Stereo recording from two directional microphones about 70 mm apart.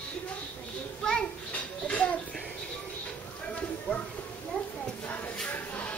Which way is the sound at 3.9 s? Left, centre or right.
Left.